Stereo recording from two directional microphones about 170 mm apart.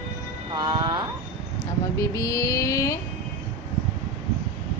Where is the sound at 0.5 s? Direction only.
25° right (ahead or behind).